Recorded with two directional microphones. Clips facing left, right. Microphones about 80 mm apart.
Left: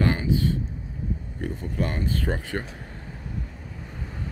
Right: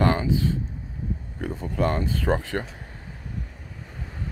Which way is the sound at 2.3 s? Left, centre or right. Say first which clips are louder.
Right 4 dB; right.